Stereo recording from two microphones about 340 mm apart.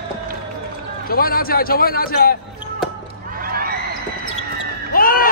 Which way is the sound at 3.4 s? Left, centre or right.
Right.